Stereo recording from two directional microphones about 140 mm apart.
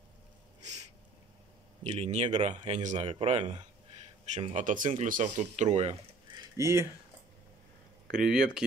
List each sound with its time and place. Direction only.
1.8 s speech: 50° right (ahead or behind)
3.1 s speech: 45° right (ahead or behind)
4.6 s speech: 65° right (ahead or behind)
6.3 s a sound: 20° right (ahead or behind)
8.1 s speech: 5° right (ahead or behind)